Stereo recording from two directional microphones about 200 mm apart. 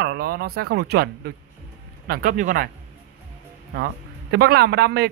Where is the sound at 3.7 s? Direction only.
55° right (ahead or behind).